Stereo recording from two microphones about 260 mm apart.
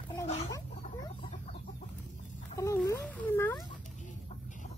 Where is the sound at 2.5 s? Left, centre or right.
Centre.